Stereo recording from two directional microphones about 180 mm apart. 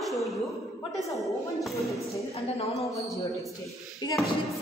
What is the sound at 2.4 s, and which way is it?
Speech, 35° left (ahead or behind).